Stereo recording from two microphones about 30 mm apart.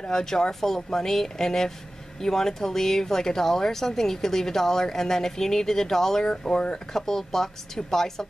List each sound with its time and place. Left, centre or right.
0.1 s speech: centre
7.0 s speech: centre